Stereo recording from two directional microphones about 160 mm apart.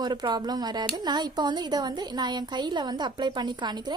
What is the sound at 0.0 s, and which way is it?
Speech, 30° right (ahead or behind).